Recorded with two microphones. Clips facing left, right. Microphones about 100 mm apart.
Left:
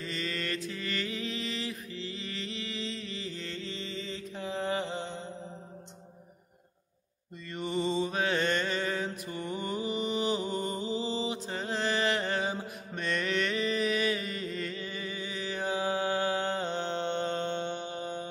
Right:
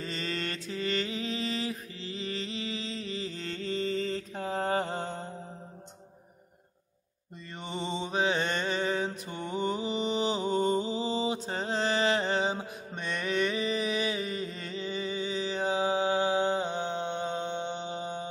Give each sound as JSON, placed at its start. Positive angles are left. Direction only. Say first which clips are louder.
{"t": 0.0, "sound": "mantra", "louder": "right 1 dB", "side_deg": -35}
{"t": 7.5, "sound": "mantra", "louder": "left 5 dB", "side_deg": -20}